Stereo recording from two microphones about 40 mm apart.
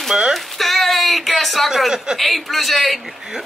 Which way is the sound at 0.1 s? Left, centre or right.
Centre.